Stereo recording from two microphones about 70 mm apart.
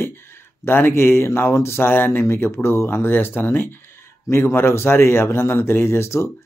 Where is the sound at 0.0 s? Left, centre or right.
Left.